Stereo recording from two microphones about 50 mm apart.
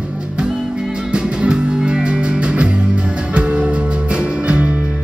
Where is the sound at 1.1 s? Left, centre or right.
Centre.